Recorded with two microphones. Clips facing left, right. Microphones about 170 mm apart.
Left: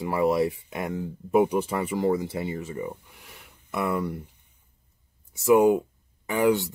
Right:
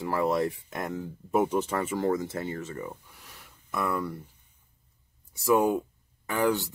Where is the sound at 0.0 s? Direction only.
5° left (ahead or behind).